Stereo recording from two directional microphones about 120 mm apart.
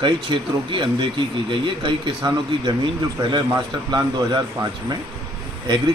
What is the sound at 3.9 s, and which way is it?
A man's voice, 35° right (ahead or behind).